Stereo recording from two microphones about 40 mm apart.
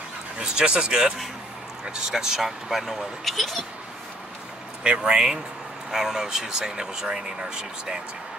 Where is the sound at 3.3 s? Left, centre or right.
Centre.